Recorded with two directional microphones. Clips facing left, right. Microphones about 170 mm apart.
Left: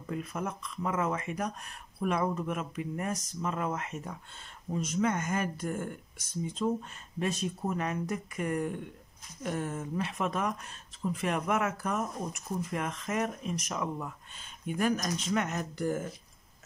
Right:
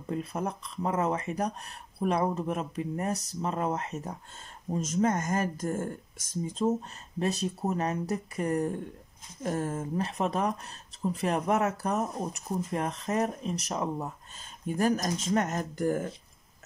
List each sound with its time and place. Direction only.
0.1 s speech: 30° right (ahead or behind)